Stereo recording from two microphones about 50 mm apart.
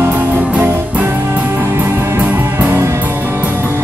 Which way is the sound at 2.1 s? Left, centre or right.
Right.